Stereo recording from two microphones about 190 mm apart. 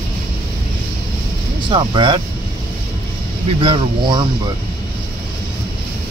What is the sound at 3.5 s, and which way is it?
Speech, 25° right (ahead or behind).